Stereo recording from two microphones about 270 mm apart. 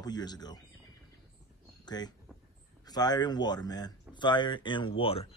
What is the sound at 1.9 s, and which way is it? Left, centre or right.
A man's voice, centre.